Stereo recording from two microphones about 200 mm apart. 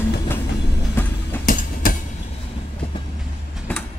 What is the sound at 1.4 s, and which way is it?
Train, 45° left (ahead or behind).